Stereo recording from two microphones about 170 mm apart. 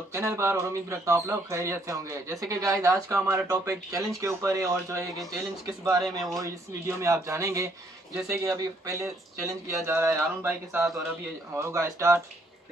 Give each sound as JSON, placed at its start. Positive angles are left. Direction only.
{"t": 0.1, "sound": "speech", "side_deg": -15}